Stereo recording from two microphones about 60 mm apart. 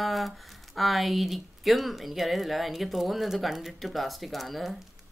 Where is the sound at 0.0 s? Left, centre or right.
Centre.